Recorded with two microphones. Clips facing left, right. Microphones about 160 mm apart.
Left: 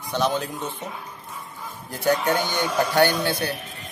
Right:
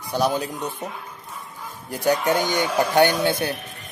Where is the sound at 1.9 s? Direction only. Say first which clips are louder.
Right 1 dB; 15° right (ahead or behind).